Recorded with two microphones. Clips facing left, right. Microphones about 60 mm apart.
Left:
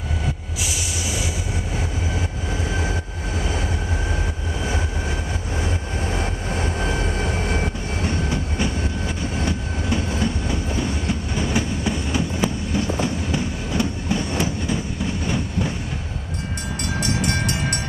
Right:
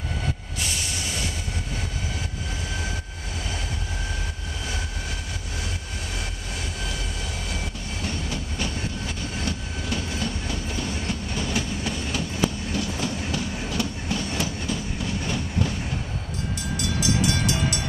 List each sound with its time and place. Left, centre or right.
0.6 s train: centre
5.6 s vehicle: left
15.2 s train: centre
17.0 s train: left